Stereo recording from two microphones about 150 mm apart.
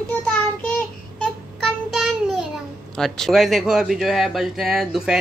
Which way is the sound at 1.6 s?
Centre (ahead or behind).